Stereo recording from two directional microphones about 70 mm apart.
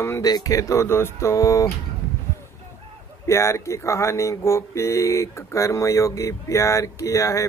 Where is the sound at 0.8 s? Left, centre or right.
Left.